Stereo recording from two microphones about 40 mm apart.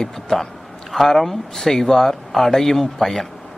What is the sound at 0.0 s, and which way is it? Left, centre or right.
A man's voice, centre.